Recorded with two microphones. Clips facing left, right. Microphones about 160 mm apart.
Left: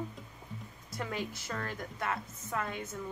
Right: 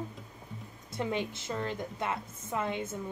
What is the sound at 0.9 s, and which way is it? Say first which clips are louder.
Speech: right 4 dB; 25° right (ahead or behind).